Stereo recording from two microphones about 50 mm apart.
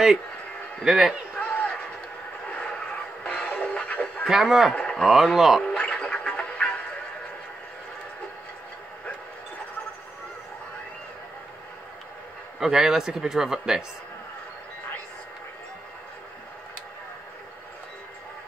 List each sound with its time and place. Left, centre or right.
0.8 s a man's voice: centre
1.4 s a sound: left
3.5 s music: left
4.3 s a man's voice: centre
4.7 s a sound: centre
5.0 s speech: centre
5.6 s music: centre
12.5 s a man's voice: centre